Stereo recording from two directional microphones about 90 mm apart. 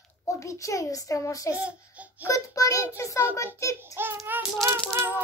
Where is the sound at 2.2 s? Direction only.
40° left (ahead or behind).